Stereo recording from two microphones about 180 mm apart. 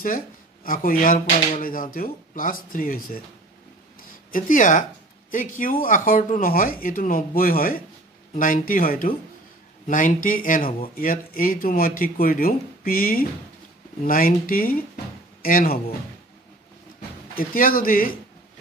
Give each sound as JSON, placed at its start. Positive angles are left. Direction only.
{"t": 0.7, "sound": "speech", "side_deg": 50}
{"t": 4.3, "sound": "speech", "side_deg": 50}
{"t": 17.4, "sound": "speech", "side_deg": 50}